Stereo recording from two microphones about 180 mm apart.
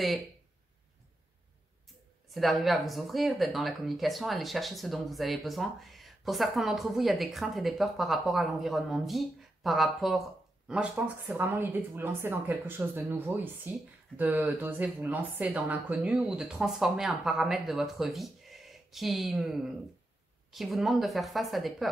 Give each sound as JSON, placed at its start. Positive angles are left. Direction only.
{"t": 2.3, "sound": "speech", "side_deg": 0}